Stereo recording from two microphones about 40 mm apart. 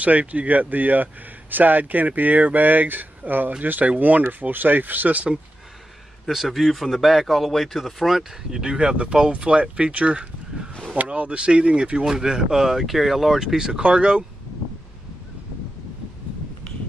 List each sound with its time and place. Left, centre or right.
0.0 s speech: right
6.2 s speech: centre
8.2 s speech: centre
8.7 s speech: right
12.1 s speech: centre